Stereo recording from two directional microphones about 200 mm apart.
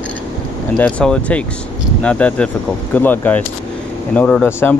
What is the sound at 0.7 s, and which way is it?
Speech, 5° left (ahead or behind).